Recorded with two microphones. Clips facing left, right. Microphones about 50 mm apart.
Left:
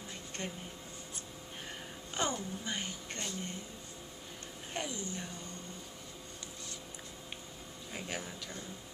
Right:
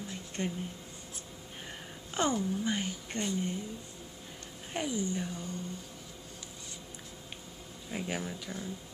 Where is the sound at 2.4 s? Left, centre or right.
Centre.